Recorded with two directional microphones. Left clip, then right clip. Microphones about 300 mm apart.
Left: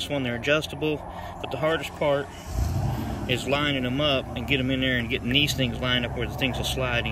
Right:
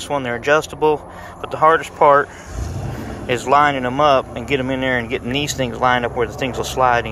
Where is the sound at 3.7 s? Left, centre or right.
Centre.